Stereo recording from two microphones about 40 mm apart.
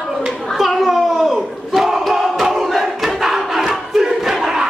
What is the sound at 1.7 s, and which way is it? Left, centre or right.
Battle cry, centre.